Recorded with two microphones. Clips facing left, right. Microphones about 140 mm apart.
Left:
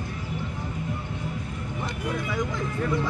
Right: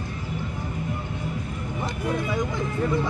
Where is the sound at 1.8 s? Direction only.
25° right (ahead or behind).